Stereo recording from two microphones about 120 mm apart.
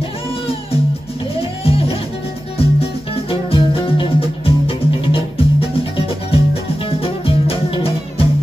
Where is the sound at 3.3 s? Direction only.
50° left (ahead or behind).